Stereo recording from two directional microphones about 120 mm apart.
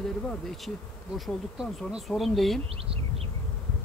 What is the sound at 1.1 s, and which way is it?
Speech, centre (ahead or behind).